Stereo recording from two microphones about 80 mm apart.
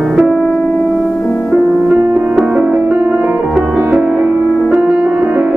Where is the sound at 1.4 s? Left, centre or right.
Centre.